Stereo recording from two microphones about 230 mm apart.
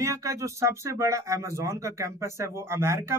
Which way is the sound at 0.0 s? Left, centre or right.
Centre.